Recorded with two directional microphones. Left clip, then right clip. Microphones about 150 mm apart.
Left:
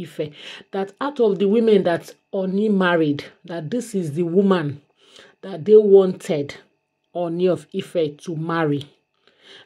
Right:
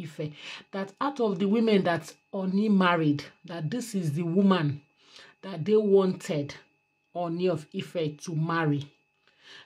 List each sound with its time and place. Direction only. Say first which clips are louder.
0.0 s speech: left 9 dB; 20° left (ahead or behind)
6.3 s speech: left 8 dB; 30° left (ahead or behind)
7.1 s speech: left 8 dB; 15° left (ahead or behind)